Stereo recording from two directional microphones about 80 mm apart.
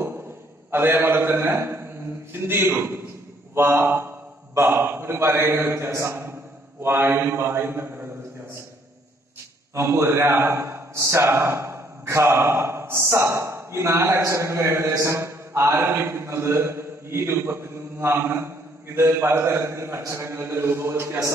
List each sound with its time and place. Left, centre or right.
0.7 s a man's voice: right
9.8 s a man's voice: right